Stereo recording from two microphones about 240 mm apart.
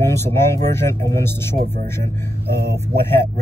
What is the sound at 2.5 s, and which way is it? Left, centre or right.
Speech, right.